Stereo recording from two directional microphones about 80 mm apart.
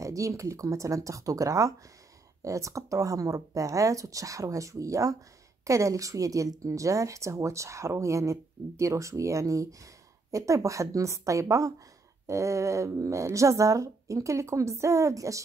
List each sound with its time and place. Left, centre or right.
0.0 s a woman's voice: right